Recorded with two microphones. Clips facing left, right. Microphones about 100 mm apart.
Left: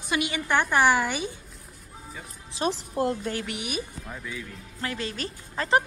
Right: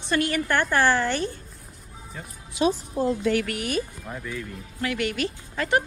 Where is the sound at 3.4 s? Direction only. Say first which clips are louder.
Right 5 dB; 20° left (ahead or behind).